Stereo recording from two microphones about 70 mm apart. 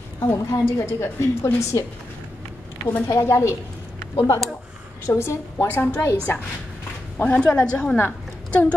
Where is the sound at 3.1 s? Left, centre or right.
Left.